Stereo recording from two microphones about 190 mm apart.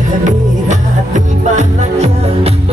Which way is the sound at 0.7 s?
40° right (ahead or behind).